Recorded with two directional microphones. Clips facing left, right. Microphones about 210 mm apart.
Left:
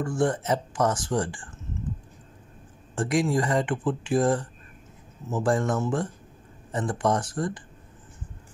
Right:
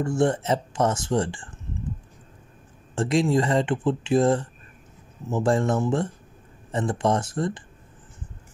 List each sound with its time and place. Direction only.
0.0 s speech: 25° right (ahead or behind)
3.0 s speech: 25° right (ahead or behind)